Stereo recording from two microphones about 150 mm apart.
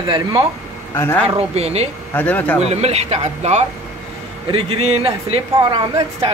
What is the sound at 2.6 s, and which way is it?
A woman's voice, 45° right (ahead or behind).